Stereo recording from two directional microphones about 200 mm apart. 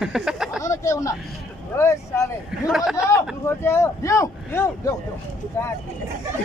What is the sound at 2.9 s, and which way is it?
Speech, 15° left (ahead or behind).